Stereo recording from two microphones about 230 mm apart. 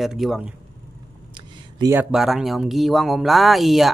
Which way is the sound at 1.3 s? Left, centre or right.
Centre.